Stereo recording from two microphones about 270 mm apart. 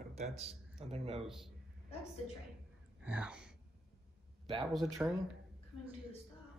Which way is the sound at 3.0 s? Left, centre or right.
Centre.